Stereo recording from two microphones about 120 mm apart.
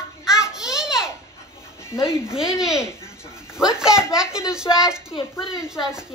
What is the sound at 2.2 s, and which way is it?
Speech, 5° right (ahead or behind).